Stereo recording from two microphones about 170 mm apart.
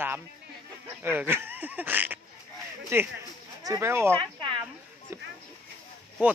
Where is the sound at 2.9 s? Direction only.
15° right (ahead or behind).